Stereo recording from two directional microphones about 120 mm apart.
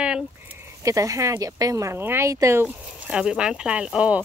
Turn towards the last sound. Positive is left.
turn(degrees=-10)  # may be behind; listen again after turning